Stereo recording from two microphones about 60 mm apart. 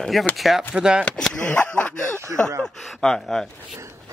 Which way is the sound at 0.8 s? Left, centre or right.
Centre.